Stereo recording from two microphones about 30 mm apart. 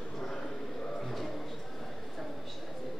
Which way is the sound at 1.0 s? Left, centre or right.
Centre.